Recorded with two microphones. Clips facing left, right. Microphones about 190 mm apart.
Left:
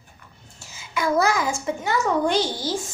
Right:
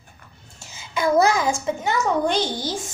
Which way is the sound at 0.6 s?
20° right (ahead or behind).